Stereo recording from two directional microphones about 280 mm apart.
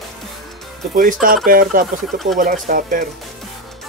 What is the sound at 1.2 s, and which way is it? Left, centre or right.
Speech, right.